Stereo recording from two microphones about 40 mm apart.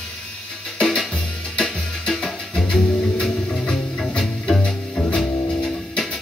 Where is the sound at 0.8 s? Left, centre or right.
Centre; by 3.2 s left.